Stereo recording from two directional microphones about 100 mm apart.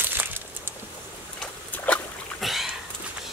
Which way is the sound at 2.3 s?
Centre (ahead or behind).